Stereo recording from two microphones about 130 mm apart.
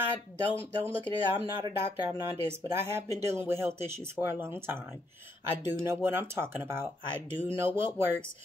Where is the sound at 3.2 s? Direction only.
20° right (ahead or behind).